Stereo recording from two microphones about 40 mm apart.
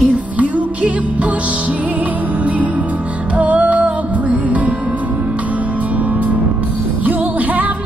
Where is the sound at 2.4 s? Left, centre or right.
Right.